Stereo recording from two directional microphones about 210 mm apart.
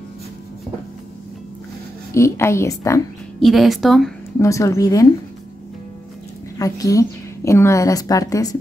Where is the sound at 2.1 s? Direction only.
15° left (ahead or behind).